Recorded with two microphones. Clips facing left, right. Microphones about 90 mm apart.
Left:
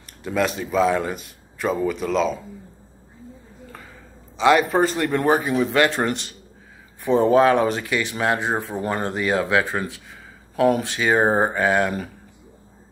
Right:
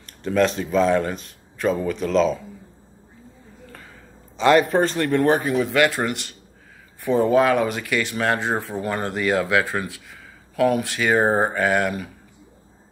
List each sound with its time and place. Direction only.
0.2 s speech: 5° left (ahead or behind)
4.4 s speech: 5° left (ahead or behind); by 12.1 s 30° left (ahead or behind)